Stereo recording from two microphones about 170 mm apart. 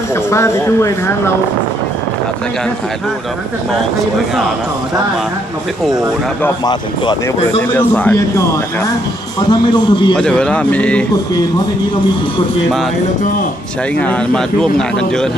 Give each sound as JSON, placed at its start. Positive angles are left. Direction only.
{"t": 0.1, "sound": "speech", "side_deg": 15}
{"t": 6.6, "sound": "a man's voice", "side_deg": 25}
{"t": 7.7, "sound": "speech", "side_deg": 10}
{"t": 9.5, "sound": "a man's voice", "side_deg": 25}
{"t": 10.1, "sound": "speech", "side_deg": 5}
{"t": 13.9, "sound": "speech", "side_deg": 5}